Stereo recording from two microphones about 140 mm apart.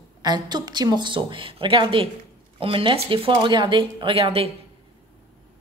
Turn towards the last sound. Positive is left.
turn(degrees=-40)  # may be behind; listen again after turning